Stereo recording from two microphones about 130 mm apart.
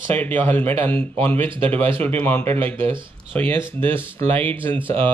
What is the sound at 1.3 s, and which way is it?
Speech, 45° right (ahead or behind).